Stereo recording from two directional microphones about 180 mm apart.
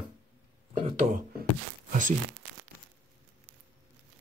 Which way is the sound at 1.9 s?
45° right (ahead or behind).